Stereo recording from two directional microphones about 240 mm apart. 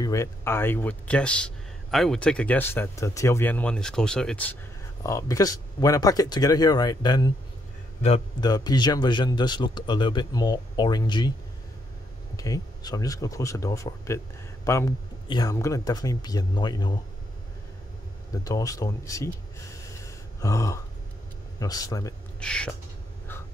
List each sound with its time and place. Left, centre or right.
0.0 s speech: centre
12.4 s speech: centre
18.3 s speech: centre
22.4 s a sound: centre